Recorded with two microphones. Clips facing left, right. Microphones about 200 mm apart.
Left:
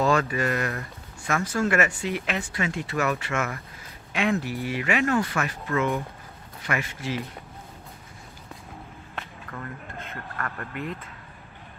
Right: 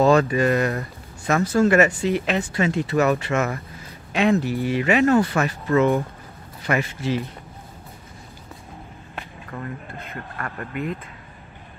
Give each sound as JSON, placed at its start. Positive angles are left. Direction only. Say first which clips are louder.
{"t": 0.0, "sound": "speech", "louder": "right 6 dB", "side_deg": -35}
{"t": 9.1, "sound": "speech", "louder": "right 4 dB", "side_deg": -10}